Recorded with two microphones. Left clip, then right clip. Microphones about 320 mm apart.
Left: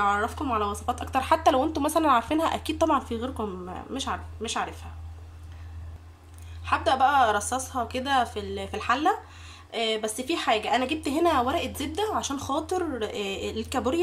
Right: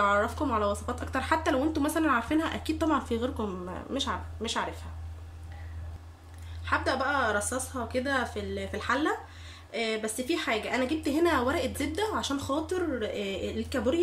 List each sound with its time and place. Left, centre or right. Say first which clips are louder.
0.0 s a woman's voice: left 1 dB; centre
6.6 s a woman's voice: left 6 dB; centre